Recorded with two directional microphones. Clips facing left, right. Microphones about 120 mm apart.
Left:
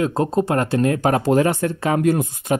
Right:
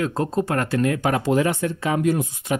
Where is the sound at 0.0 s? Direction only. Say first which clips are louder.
Left 4 dB; 20° left (ahead or behind).